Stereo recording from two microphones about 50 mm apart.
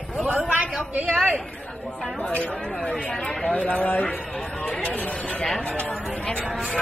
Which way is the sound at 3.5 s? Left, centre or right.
Left.